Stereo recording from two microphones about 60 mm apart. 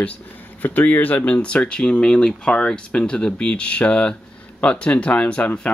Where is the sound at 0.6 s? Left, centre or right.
Left.